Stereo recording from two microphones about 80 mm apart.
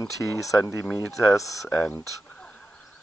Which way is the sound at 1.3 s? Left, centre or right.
Left.